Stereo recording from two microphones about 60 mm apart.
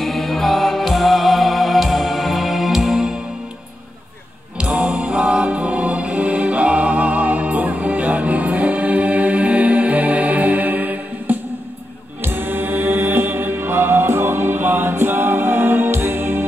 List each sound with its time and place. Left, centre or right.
0.0 s music: centre
4.6 s music: centre; by 16.4 s right